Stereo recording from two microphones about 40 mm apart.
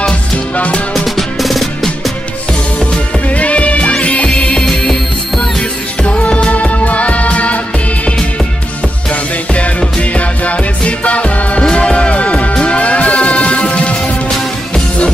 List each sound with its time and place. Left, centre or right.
0.6 s music: left
0.9 s music: centre
3.3 s music: left
6.0 s music: left
9.1 s music: left